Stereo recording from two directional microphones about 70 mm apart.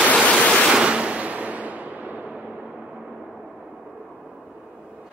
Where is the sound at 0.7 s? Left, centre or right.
Centre.